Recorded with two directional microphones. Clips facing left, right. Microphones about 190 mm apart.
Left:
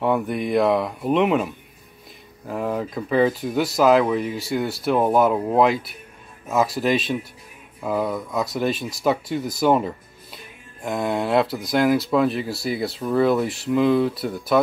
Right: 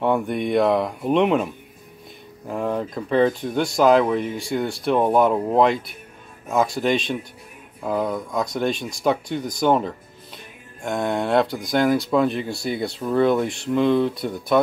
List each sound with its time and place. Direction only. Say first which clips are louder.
0.0 s speech: right 1 dB; centre (ahead or behind)